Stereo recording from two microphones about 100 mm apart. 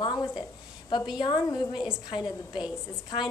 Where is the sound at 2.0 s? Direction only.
45° left (ahead or behind).